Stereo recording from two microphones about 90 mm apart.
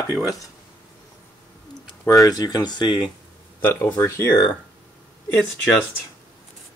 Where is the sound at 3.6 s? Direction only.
25° left (ahead or behind).